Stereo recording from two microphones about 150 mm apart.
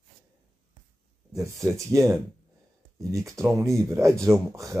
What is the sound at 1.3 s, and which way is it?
Speech, 20° right (ahead or behind).